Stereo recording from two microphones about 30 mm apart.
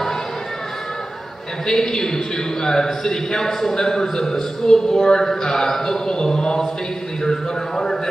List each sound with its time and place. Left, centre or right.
1.7 s a man's voice: centre